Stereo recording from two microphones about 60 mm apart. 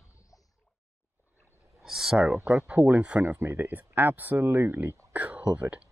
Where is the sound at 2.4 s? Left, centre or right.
Centre.